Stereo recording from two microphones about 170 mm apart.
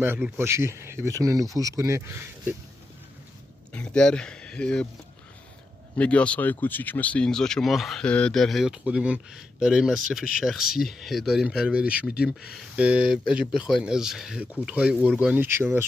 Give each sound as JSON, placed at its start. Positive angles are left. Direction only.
{"t": 0.0, "sound": "speech", "side_deg": -15}
{"t": 3.7, "sound": "speech", "side_deg": 5}
{"t": 5.9, "sound": "speech", "side_deg": 5}